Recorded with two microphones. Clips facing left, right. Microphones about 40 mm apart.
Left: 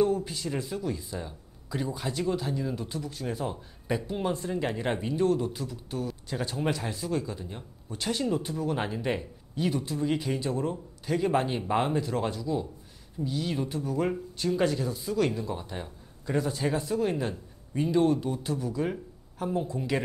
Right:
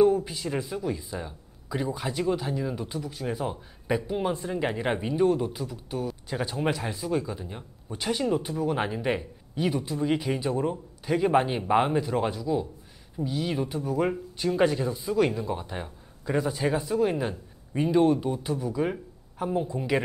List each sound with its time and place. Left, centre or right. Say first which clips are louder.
0.0 s speech: right 4 dB; centre